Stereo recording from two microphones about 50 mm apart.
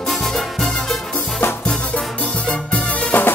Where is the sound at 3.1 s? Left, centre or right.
Left.